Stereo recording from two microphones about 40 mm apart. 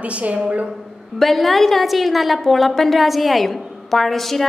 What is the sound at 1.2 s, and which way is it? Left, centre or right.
A woman's voice, centre.